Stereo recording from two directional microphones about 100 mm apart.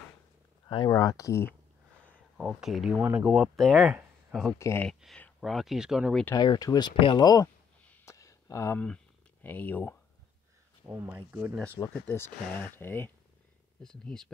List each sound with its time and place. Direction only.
0.8 s speech: 35° left (ahead or behind)
2.3 s speech: 5° right (ahead or behind)
3.0 s speech: 15° right (ahead or behind)
3.5 s speech: 5° left (ahead or behind)
4.6 s speech: 30° left (ahead or behind)
5.4 s speech: centre (ahead or behind)
6.3 s speech: 45° left (ahead or behind)
7.0 s speech: 55° left (ahead or behind)
8.0 s a sound: 30° left (ahead or behind)
8.7 s speech: 10° left (ahead or behind)
10.9 s speech: 20° right (ahead or behind)
11.9 s speech: 20° left (ahead or behind)
13.8 s speech: 5° left (ahead or behind)